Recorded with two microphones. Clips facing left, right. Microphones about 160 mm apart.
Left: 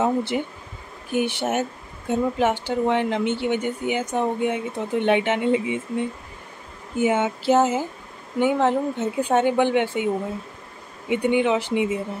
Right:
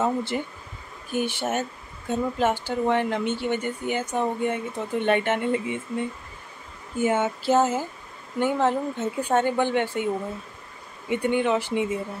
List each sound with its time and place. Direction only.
0.0 s a sound: 15° left (ahead or behind)
1.1 s speech: 15° left (ahead or behind)
7.0 s speech: 15° left (ahead or behind)